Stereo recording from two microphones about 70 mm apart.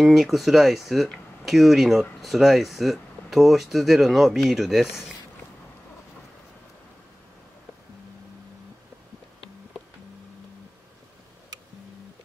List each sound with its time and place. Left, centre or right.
0.0 s speech: centre